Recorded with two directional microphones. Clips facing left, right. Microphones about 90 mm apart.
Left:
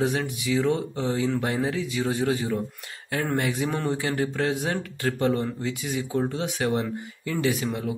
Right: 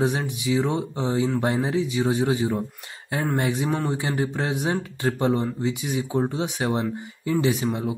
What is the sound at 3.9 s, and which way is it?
Speech, 20° right (ahead or behind).